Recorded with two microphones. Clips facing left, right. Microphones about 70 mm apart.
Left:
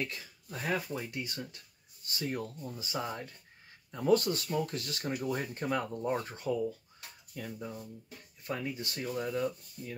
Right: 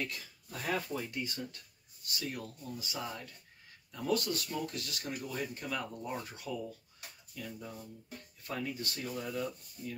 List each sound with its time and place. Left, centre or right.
0.5 s speech: centre
2.0 s speech: left
8.5 s speech: left